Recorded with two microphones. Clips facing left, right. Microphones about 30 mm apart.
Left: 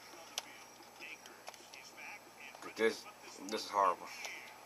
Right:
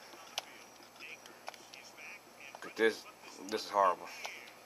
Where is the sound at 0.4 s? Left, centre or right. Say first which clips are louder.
Right 3 dB; centre.